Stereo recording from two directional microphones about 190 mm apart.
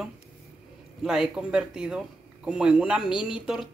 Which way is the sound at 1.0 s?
5° right (ahead or behind).